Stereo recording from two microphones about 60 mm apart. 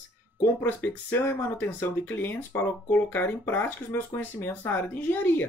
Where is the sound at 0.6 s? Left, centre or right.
Left.